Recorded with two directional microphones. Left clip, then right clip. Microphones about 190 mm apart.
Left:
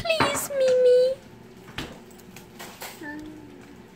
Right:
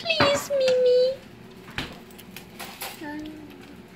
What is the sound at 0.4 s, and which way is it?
Child singing, 45° left (ahead or behind).